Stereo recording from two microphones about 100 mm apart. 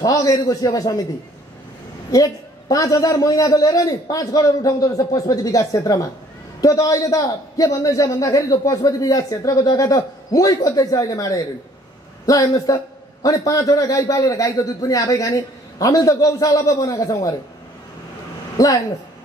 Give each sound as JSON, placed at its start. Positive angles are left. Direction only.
{"t": 0.0, "sound": "a man's voice", "side_deg": 35}
{"t": 2.0, "sound": "a man's voice", "side_deg": 40}